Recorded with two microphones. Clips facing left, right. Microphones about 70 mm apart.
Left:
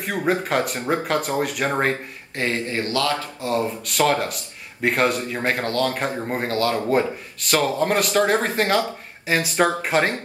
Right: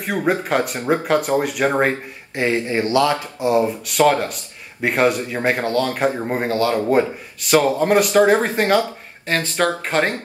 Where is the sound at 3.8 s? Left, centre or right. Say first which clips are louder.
Right 4 dB; centre.